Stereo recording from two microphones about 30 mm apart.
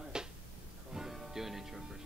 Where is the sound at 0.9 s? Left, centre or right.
Centre.